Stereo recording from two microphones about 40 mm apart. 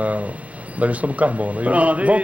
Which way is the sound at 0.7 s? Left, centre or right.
Right.